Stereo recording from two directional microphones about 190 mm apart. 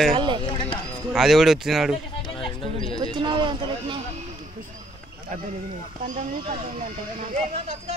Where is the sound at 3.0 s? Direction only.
25° right (ahead or behind).